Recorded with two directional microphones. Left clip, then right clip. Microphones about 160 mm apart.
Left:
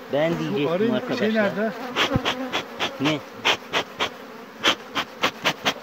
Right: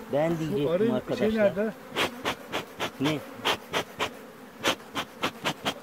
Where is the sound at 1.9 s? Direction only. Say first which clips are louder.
Left 8 dB; 20° right (ahead or behind).